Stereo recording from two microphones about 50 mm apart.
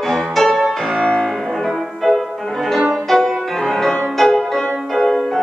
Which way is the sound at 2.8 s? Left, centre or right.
Centre.